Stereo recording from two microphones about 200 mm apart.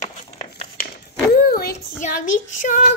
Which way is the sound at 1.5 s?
50° left (ahead or behind).